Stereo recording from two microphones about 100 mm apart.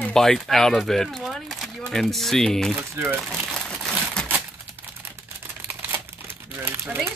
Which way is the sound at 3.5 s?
5° left (ahead or behind).